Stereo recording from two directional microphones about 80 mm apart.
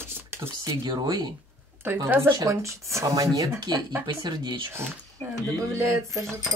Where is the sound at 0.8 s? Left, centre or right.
Right.